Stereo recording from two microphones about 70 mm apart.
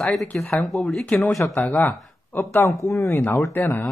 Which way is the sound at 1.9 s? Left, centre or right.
Left.